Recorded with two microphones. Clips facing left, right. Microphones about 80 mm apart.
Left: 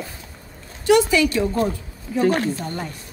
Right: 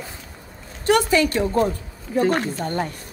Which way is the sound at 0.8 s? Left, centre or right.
Right.